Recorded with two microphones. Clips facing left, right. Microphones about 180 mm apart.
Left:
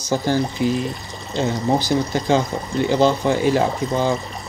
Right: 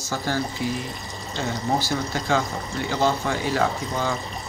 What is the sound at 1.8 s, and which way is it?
Speech, 15° left (ahead or behind).